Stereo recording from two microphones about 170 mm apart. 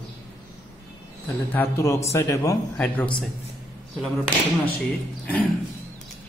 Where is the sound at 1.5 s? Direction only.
15° left (ahead or behind).